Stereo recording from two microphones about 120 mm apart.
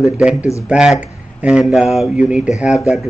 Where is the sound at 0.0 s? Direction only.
5° right (ahead or behind).